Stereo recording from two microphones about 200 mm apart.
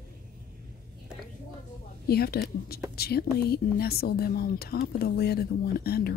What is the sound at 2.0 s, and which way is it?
Speech, 50° left (ahead or behind).